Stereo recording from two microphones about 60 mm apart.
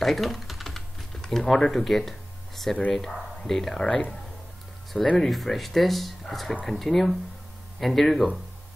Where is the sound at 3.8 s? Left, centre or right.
Centre.